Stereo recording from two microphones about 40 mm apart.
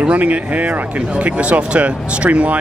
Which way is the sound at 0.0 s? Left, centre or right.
Right.